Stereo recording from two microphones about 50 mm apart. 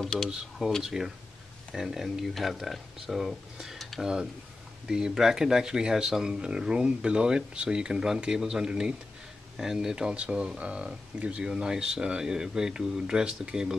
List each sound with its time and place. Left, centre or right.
0.0 s a sound: centre
0.8 s speech: centre
4.8 s speech: centre